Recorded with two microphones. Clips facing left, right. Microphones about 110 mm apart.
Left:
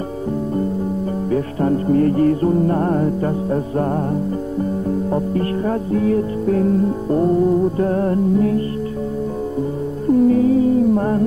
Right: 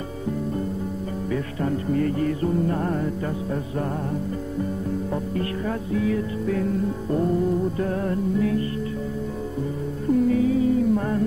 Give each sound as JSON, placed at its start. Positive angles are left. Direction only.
{"t": 1.3, "sound": "music", "side_deg": 40}
{"t": 10.1, "sound": "music", "side_deg": 45}